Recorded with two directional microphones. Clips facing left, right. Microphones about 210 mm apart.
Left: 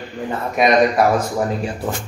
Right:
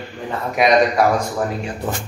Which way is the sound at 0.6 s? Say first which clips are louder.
Even; centre (ahead or behind).